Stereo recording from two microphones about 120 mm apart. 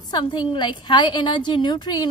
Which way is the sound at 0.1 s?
40° left (ahead or behind).